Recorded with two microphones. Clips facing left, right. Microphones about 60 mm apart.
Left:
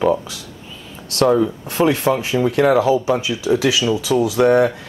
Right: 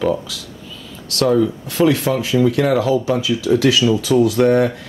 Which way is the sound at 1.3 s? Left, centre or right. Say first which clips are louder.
Right 1 dB; left.